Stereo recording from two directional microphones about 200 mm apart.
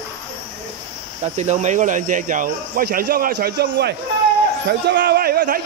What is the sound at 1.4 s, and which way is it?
Speech, 35° right (ahead or behind).